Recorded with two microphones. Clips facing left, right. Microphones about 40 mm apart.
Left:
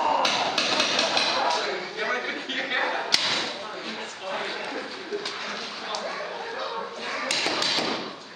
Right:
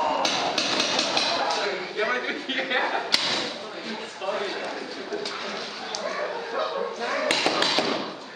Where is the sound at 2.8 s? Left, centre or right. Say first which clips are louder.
Right 1 dB; centre.